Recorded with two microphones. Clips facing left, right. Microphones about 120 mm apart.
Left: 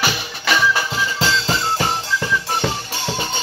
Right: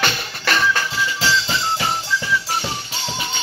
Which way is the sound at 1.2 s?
45° left (ahead or behind).